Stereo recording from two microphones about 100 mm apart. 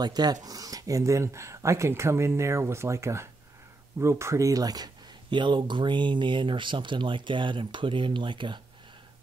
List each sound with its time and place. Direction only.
0.0 s speech: 45° right (ahead or behind)